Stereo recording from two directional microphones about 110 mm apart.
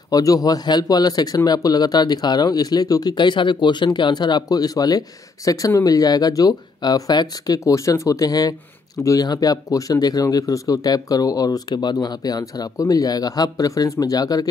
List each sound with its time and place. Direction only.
0.1 s speech: 35° left (ahead or behind)